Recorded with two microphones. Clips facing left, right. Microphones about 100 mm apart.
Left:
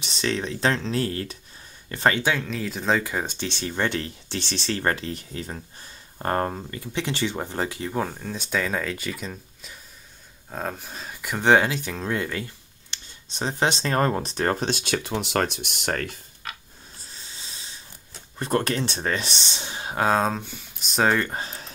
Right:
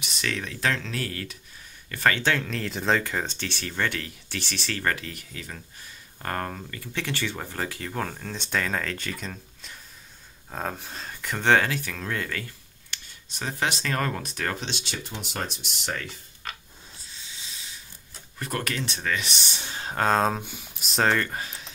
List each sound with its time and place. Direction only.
0.0 s speech: 30° left (ahead or behind)
2.2 s speech: 5° left (ahead or behind); by 15.0 s 50° left (ahead or behind)
15.0 s speech: 85° left; by 16.2 s 55° left (ahead or behind)
16.4 s a sound: centre (ahead or behind)
17.2 s a sound: 40° left (ahead or behind)
18.4 s speech: 30° left (ahead or behind); by 21.2 s 5° left (ahead or behind)
21.2 s speech: 25° left (ahead or behind)